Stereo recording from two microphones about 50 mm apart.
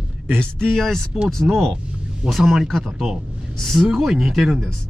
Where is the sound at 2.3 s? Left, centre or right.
Centre.